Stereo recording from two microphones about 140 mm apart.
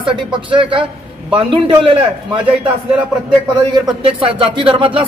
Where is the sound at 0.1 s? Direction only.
35° right (ahead or behind).